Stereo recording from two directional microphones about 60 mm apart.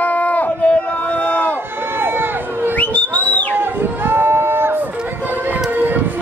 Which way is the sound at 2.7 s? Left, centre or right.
Left.